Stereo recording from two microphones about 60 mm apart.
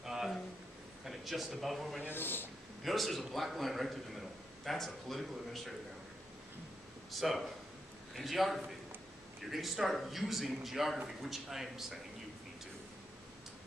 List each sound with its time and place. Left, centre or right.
0.0 s a sound: centre
1.0 s speech: centre
2.0 s a man's voice: left
2.8 s a man's voice: centre
7.1 s a man's voice: centre